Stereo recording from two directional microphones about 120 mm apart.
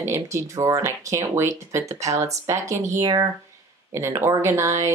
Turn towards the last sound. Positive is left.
turn(degrees=-25)  # may be behind; listen again after turning